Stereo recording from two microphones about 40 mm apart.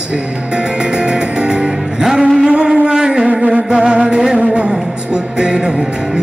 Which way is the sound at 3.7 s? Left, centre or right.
Right.